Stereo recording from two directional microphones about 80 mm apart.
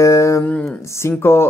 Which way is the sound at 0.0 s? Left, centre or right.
Left.